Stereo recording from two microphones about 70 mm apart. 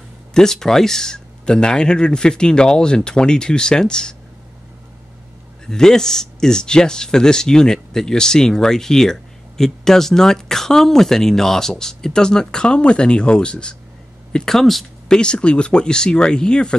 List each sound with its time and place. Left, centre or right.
0.3 s speech: centre
5.7 s speech: centre